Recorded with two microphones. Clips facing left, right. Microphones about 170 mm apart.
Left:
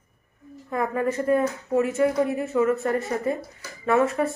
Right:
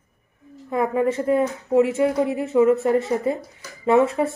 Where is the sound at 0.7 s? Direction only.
20° right (ahead or behind).